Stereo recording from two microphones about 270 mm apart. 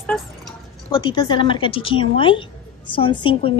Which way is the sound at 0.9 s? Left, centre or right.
Centre.